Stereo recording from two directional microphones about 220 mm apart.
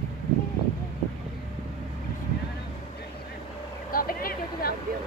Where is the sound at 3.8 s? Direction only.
40° left (ahead or behind).